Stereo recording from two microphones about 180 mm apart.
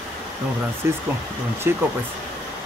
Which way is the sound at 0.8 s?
15° right (ahead or behind).